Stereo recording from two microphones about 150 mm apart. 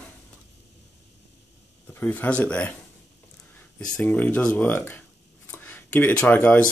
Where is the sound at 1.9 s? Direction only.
15° left (ahead or behind).